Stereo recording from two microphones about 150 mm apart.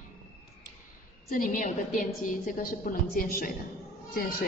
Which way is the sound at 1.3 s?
60° left (ahead or behind).